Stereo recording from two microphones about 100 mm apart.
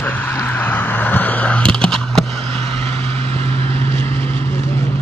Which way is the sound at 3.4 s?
80° right.